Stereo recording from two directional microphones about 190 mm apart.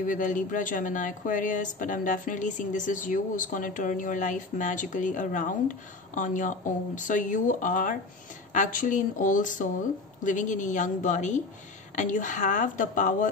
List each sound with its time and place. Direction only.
0.0 s speech: 45° left (ahead or behind)